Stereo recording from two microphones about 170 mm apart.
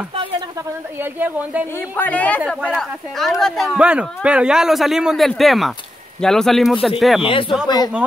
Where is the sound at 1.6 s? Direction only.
15° left (ahead or behind).